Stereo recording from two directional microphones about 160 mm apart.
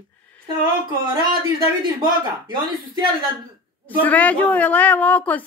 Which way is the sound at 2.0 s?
30° right (ahead or behind).